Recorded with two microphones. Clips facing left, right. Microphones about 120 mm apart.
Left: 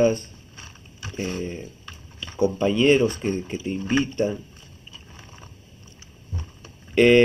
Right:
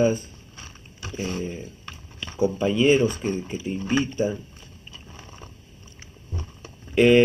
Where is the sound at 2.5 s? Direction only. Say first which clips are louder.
Left 1 dB; 25° left (ahead or behind).